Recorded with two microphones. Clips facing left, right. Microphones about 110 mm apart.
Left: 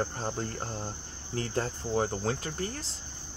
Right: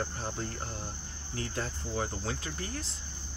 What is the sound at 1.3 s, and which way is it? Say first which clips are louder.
Cricket: left 5 dB; 40° left (ahead or behind).